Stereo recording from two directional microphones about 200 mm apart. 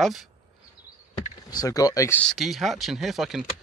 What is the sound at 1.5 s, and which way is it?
Speech, 20° left (ahead or behind).